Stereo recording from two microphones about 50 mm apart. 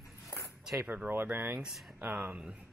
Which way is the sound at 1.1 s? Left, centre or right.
Right.